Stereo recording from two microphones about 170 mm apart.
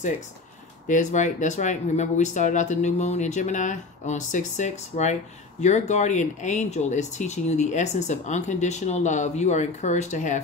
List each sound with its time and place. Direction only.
0.8 s speech: 45° left (ahead or behind)